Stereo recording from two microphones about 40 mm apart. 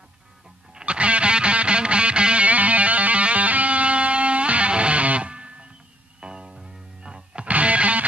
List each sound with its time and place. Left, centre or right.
0.8 s music: right
7.4 s music: right